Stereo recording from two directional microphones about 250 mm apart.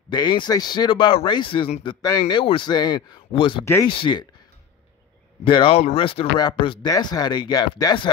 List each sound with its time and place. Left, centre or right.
0.1 s a man's voice: centre
5.4 s speech: centre